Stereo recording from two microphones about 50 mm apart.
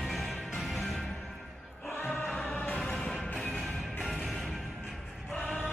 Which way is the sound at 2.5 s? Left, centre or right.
Left.